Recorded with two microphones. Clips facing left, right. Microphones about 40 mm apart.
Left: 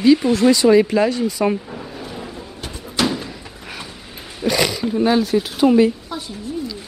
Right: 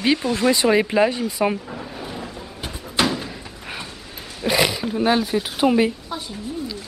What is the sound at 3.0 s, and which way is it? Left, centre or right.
Door, centre.